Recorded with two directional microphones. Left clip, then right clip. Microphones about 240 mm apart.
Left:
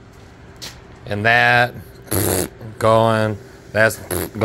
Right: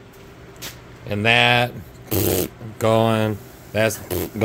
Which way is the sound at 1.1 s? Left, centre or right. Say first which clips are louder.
Left 2 dB; centre.